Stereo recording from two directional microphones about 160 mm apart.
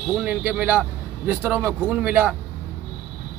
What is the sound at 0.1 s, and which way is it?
Speech, 10° right (ahead or behind).